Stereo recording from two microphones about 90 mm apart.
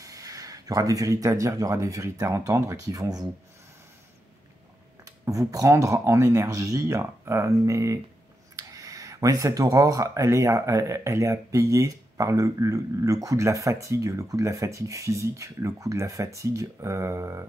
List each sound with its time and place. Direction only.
0.0 s speech: 40° right (ahead or behind)
5.0 s speech: 40° right (ahead or behind)